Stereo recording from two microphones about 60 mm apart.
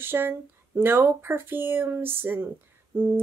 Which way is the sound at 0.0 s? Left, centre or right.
Right.